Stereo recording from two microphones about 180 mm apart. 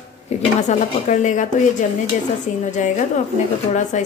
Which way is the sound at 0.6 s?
40° left (ahead or behind).